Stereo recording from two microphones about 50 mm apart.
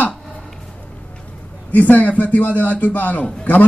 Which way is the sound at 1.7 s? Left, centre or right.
Left.